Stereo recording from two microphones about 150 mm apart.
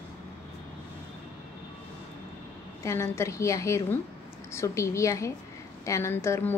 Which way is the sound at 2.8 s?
20° left (ahead or behind).